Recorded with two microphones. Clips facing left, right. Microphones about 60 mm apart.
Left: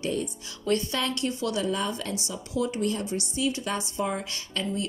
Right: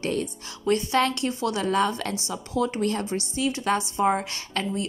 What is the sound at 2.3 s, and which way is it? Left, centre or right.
Speech, right.